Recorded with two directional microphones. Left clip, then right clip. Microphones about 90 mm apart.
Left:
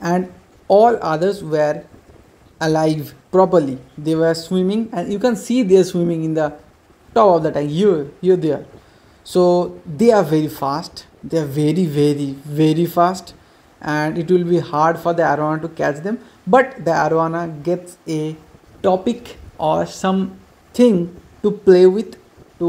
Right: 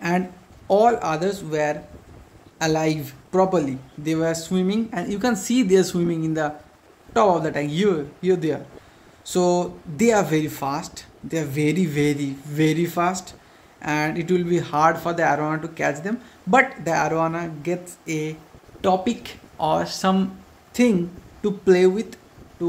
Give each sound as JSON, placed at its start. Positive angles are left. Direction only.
{"t": 0.7, "sound": "speech", "side_deg": 15}
{"t": 3.3, "sound": "speech", "side_deg": 25}
{"t": 20.7, "sound": "speech", "side_deg": 20}